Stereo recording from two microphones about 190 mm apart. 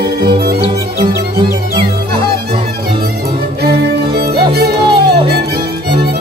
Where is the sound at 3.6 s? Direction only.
55° right (ahead or behind).